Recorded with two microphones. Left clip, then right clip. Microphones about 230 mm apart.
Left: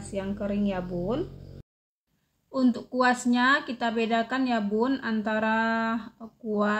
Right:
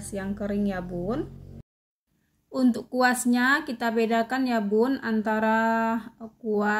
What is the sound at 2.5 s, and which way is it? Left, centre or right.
A woman's voice, centre.